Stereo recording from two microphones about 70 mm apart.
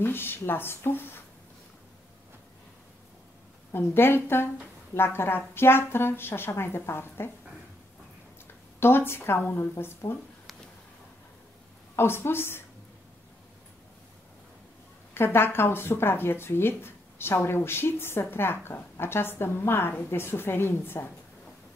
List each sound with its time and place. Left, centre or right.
0.0 s speech: left
3.7 s speech: left
8.7 s speech: left
11.9 s speech: left
15.1 s speech: left